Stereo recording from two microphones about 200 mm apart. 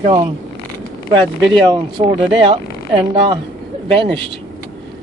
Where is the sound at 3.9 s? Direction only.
25° right (ahead or behind).